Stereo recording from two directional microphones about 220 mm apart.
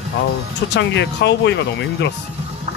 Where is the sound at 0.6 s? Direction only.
50° left (ahead or behind).